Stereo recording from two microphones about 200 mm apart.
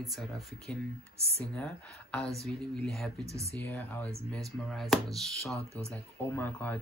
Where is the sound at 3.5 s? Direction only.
10° left (ahead or behind).